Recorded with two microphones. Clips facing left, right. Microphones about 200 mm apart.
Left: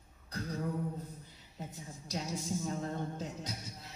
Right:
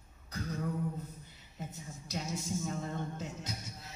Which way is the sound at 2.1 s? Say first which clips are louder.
Even; 35° left (ahead or behind).